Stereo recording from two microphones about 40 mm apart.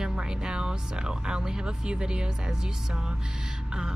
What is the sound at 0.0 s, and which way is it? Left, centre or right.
Speech, centre.